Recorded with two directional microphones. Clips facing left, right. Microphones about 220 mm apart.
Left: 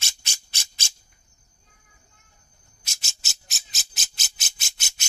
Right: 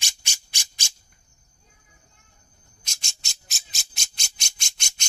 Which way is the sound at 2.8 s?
5° left (ahead or behind).